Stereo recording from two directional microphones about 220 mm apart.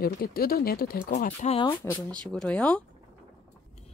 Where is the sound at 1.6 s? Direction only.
10° left (ahead or behind).